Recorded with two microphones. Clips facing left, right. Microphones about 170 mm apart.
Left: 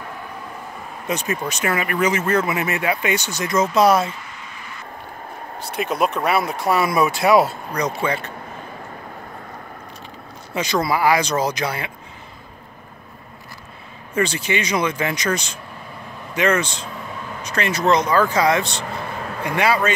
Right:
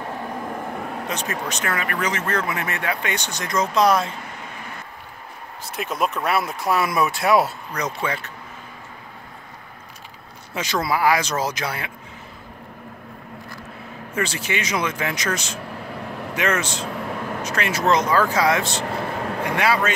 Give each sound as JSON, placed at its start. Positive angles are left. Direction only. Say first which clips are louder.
{"t": 0.5, "sound": "vehicle", "louder": "right 6 dB", "side_deg": -65}
{"t": 1.0, "sound": "speech", "louder": "left 8 dB", "side_deg": 10}
{"t": 5.7, "sound": "speech", "louder": "left 3 dB", "side_deg": 0}
{"t": 10.5, "sound": "speech", "louder": "left 3 dB", "side_deg": 0}
{"t": 14.1, "sound": "speech", "louder": "left 4 dB", "side_deg": -5}
{"t": 17.0, "sound": "vehicle", "louder": "right 4 dB", "side_deg": -60}
{"t": 17.4, "sound": "speech", "louder": "left 4 dB", "side_deg": -5}